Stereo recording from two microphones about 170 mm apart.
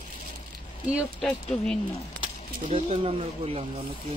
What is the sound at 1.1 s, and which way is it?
Speech, 5° left (ahead or behind).